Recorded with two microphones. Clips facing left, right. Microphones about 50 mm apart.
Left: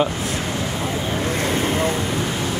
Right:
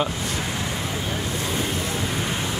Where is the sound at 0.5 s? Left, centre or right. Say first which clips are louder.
Left 4 dB; left.